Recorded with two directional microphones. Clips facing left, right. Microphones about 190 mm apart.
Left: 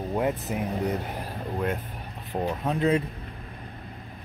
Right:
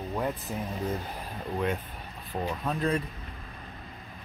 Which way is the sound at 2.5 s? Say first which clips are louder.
Left 5 dB; 20° left (ahead or behind).